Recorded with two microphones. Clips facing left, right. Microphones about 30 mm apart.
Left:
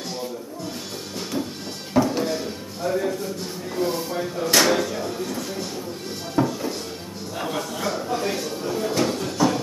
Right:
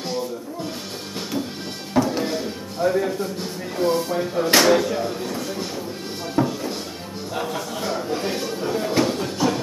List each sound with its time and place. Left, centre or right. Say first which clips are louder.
2.0 s music: even; centre
2.8 s speech: right 3 dB; centre
6.3 s cupboard open or close: even; centre
7.8 s speech: even; centre
9.4 s music: left 1 dB; centre